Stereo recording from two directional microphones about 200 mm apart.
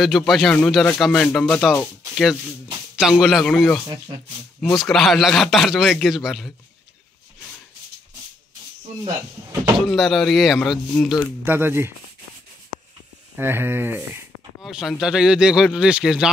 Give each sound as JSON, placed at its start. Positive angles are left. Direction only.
{"t": 0.0, "sound": "speech", "side_deg": 0}
{"t": 3.0, "sound": "speech", "side_deg": -5}
{"t": 9.8, "sound": "speech", "side_deg": 0}
{"t": 11.4, "sound": "speech", "side_deg": -10}
{"t": 13.4, "sound": "speech", "side_deg": -10}